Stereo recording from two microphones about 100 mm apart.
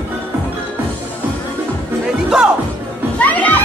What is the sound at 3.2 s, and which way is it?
Music, 15° left (ahead or behind).